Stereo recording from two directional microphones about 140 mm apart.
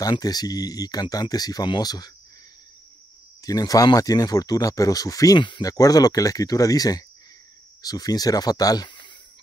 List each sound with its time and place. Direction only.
0.0 s speech: 25° left (ahead or behind)
3.4 s speech: 25° left (ahead or behind)